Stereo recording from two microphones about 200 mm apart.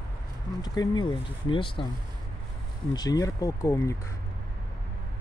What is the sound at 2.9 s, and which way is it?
Speech, 20° left (ahead or behind).